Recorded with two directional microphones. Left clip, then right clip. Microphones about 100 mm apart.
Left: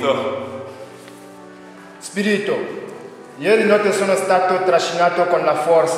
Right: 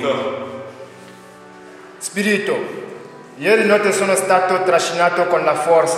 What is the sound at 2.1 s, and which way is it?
A man's voice, 15° right (ahead or behind).